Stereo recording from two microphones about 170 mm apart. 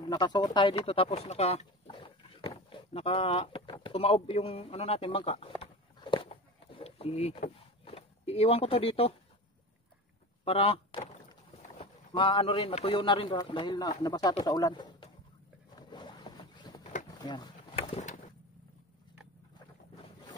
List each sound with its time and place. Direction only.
0.0 s speech: 25° left (ahead or behind)
5.6 s a sound: 30° left (ahead or behind)
7.8 s speech: 35° left (ahead or behind)
10.4 s speech: 35° left (ahead or behind)
15.9 s boat: 25° left (ahead or behind)
17.1 s pigeon: 25° left (ahead or behind); by 18.2 s 40° left (ahead or behind)